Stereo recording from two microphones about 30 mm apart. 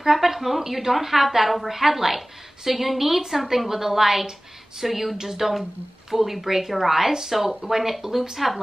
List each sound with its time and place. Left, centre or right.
0.0 s a woman's voice: centre
5.1 s a woman's voice: centre